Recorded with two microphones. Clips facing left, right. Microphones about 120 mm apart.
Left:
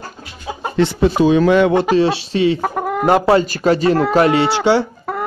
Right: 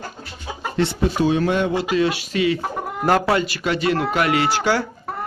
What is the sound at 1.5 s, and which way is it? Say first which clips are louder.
Speech: left 8 dB; 90° left.